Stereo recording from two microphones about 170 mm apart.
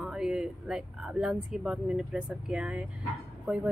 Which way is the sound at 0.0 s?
5° right (ahead or behind).